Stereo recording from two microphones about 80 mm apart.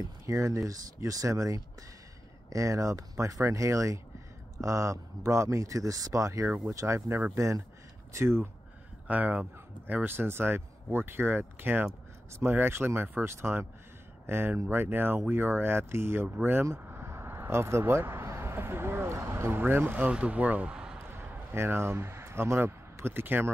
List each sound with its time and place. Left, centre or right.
0.3 s a man's voice: right
8.1 s speech: right
9.0 s speech: centre
10.0 s speech: right; by 21.0 s centre
21.0 s a sound: right